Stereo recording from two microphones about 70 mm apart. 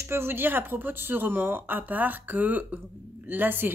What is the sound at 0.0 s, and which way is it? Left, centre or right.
Speech, right.